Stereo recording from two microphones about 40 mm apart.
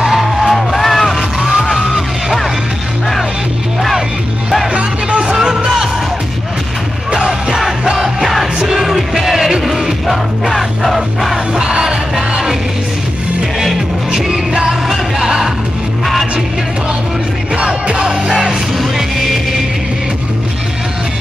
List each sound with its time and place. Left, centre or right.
0.2 s music: centre
1.4 s music: centre
4.7 s music: right
7.2 s music: centre
11.5 s music: centre
14.1 s music: centre
17.6 s music: right
18.3 s music: centre